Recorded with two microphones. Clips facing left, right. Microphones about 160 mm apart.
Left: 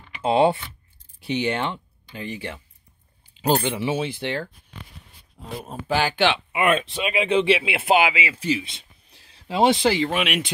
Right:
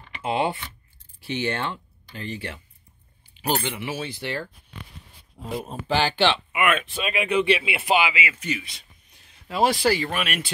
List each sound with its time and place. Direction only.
0.2 s speech: 25° left (ahead or behind)
3.6 s speech: 25° left (ahead or behind)
5.7 s speech: 10° left (ahead or behind)
6.5 s speech: 30° left (ahead or behind)